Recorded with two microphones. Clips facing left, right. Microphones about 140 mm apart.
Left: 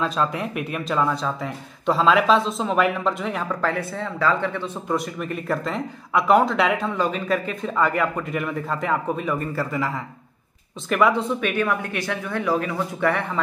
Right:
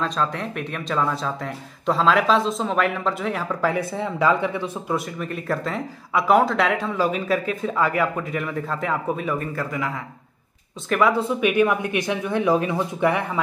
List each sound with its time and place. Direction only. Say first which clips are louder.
0.0 s speech: left 1 dB; 5° left (ahead or behind)
11.4 s speech: right 4 dB; 15° right (ahead or behind)